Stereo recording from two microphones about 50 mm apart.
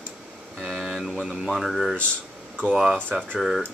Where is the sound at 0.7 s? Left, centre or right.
Centre.